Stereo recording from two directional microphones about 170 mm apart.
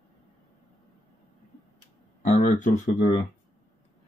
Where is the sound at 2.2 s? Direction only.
45° left (ahead or behind).